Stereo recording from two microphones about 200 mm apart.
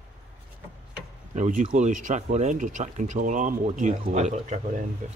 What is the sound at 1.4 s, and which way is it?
Speech, 35° right (ahead or behind).